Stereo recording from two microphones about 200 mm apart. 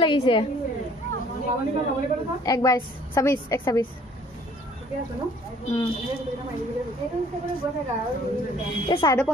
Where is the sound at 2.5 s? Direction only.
20° left (ahead or behind).